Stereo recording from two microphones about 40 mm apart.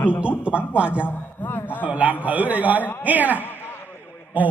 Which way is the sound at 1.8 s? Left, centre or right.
Right.